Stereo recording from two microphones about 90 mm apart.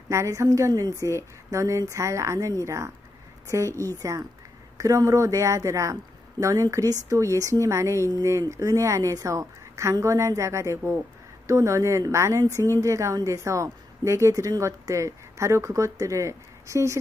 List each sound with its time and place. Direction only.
0.1 s a woman's voice: 35° right (ahead or behind)